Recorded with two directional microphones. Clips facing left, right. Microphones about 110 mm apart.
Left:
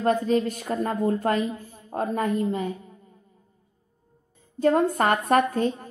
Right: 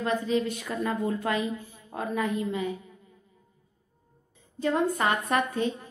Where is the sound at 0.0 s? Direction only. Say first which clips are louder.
Left 5 dB; 45° left (ahead or behind).